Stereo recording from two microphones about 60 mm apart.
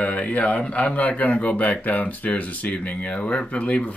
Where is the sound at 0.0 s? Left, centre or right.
Left.